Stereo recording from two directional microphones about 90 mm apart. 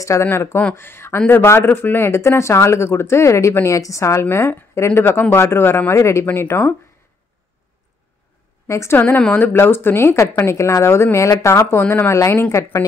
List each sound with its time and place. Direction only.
0.0 s speech: 35° left (ahead or behind)
8.6 s a woman's voice: 35° left (ahead or behind)
8.9 s speech: 20° left (ahead or behind)